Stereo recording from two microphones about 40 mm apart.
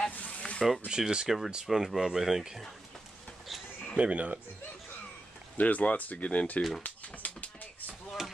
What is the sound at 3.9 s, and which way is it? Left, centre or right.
Speech, right.